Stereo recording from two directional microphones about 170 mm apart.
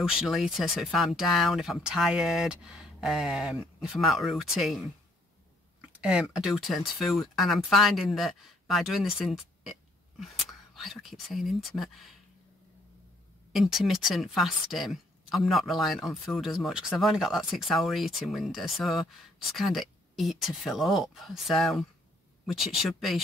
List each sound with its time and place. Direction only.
0.0 s speech: 5° right (ahead or behind)
5.9 s speech: 5° right (ahead or behind)
13.5 s speech: centre (ahead or behind)